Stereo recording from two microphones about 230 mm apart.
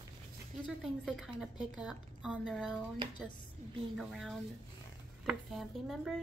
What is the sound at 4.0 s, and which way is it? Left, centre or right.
A woman's voice, centre.